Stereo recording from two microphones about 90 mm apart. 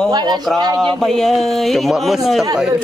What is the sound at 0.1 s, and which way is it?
Speech, 55° right (ahead or behind).